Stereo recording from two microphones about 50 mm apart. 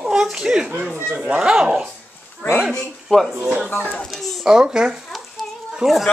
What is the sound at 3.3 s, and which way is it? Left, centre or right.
A man's voice, right.